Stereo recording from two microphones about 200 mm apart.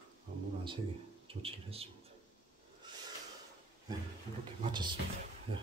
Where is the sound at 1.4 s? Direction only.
30° right (ahead or behind).